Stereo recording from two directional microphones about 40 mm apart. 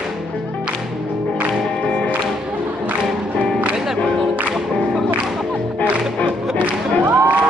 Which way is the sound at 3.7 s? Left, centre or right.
Centre.